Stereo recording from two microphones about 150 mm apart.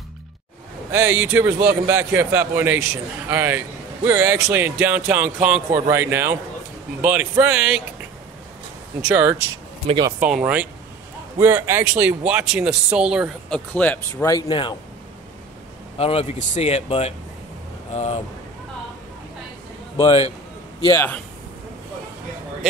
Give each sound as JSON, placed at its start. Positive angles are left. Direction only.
{"t": 0.9, "sound": "a man's voice", "side_deg": -15}
{"t": 9.0, "sound": "a man's voice", "side_deg": -10}
{"t": 13.5, "sound": "speech", "side_deg": 10}
{"t": 14.5, "sound": "speech", "side_deg": 30}
{"t": 16.0, "sound": "speech", "side_deg": 40}
{"t": 20.0, "sound": "speech", "side_deg": 35}
{"t": 20.8, "sound": "speech", "side_deg": 15}